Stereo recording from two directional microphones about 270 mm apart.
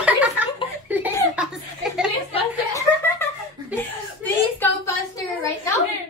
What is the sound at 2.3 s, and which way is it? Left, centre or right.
Chuckle, centre.